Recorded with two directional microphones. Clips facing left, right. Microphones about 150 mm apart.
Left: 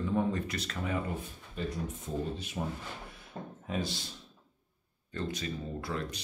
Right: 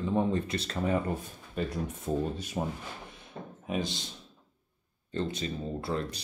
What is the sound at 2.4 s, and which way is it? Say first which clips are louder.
Speech: right 3 dB; 35° right (ahead or behind).